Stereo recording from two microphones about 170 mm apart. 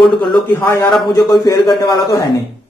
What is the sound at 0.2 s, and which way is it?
A man's voice, 10° left (ahead or behind).